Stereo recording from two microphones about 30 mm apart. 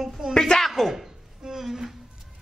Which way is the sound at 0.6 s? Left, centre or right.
Centre.